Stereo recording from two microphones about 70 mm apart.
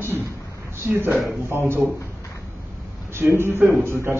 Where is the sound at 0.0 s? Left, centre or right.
Right.